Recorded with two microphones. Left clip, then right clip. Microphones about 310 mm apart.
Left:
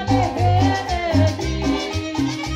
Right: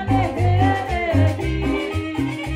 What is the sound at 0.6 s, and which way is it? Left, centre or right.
Music, left.